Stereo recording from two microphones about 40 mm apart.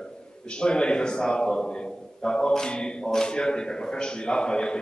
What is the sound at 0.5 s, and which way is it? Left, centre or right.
A man's voice, left.